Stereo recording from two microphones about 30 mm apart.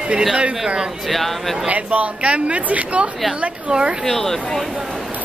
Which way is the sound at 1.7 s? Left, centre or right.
Right.